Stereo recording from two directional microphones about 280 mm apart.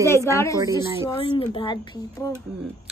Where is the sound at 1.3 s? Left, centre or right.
Centre.